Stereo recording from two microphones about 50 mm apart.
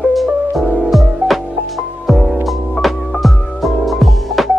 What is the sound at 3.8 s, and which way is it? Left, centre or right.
Music, centre.